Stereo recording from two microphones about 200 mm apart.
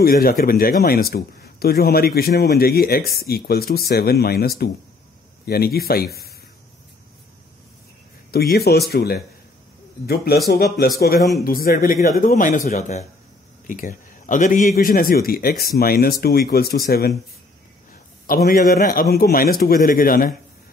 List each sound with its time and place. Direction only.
0.0 s speech: 45° left (ahead or behind)
8.3 s speech: 50° left (ahead or behind)
11.1 s a man's voice: centre (ahead or behind)
11.4 s a man's voice: 45° left (ahead or behind)
18.2 s speech: 45° left (ahead or behind)